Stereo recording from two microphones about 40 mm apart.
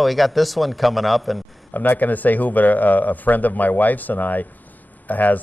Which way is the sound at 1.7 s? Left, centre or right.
Left.